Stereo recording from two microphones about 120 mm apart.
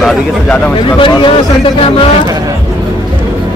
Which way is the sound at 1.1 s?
40° left (ahead or behind).